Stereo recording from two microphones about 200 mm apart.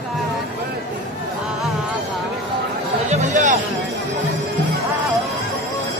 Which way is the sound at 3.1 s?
40° right (ahead or behind).